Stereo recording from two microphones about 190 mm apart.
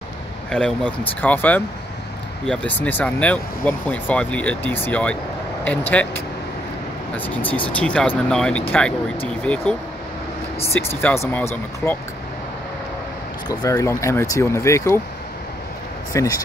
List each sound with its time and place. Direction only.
0.5 s speech: 5° left (ahead or behind)
11.0 s speech: 10° left (ahead or behind)
13.5 s speech: 15° left (ahead or behind)
16.1 s speech: 15° left (ahead or behind)